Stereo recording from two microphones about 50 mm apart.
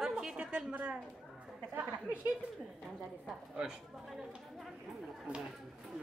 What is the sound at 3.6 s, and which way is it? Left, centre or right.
A woman's voice, centre.